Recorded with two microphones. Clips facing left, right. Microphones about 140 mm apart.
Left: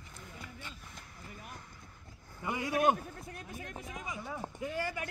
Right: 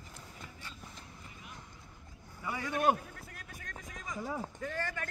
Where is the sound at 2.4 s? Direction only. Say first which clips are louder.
Left 3 dB; 15° left (ahead or behind).